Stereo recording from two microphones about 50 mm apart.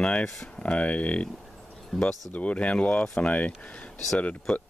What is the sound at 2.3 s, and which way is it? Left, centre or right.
Speech, left.